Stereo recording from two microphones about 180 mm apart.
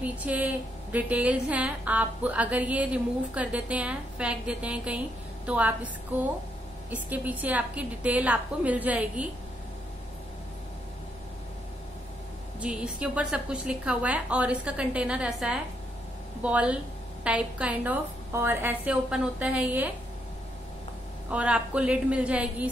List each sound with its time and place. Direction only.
0.0 s a woman's voice: 10° right (ahead or behind)
6.9 s a woman's voice: 10° right (ahead or behind)
12.5 s a woman's voice: 5° right (ahead or behind)
21.3 s a woman's voice: 5° right (ahead or behind)